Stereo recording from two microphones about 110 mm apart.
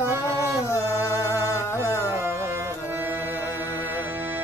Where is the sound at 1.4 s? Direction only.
25° left (ahead or behind).